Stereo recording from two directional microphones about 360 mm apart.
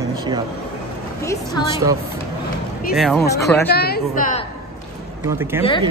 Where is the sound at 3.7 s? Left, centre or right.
Left.